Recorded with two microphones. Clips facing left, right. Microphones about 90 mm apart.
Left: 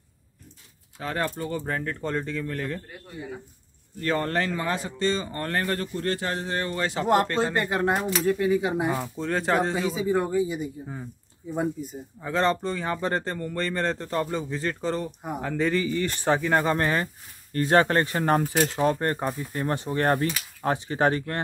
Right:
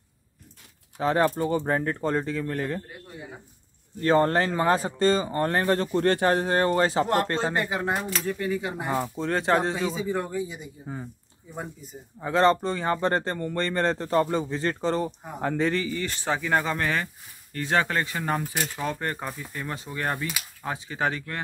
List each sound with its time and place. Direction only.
0.9 s speech: 20° right (ahead or behind)
2.0 s speech: 10° right (ahead or behind)
2.4 s speech: 20° right (ahead or behind)
4.0 s speech: 30° right (ahead or behind)
5.2 s speech: 20° right (ahead or behind)
5.9 s speech: 60° right (ahead or behind); by 7.0 s 40° right (ahead or behind)
7.3 s a man's voice: centre (ahead or behind); by 8.9 s 15° left (ahead or behind)
8.9 s speech: 10° right (ahead or behind)
9.2 s a man's voice: centre (ahead or behind)
15.9 s speech: 20° left (ahead or behind)
16.6 s speech: 35° left (ahead or behind)